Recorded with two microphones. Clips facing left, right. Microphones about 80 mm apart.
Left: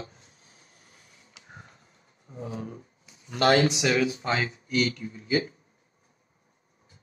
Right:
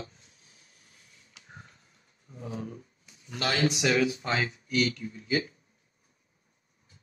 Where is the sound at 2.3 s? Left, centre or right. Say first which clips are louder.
Left 2 dB; left.